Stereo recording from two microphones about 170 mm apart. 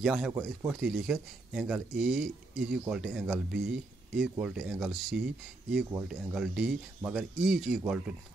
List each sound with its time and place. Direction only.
0.0 s speech: 5° right (ahead or behind)
0.3 s speech: 20° right (ahead or behind)
0.7 s speech: 5° right (ahead or behind)